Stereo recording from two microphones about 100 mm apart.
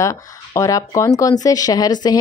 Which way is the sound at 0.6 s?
35° left (ahead or behind).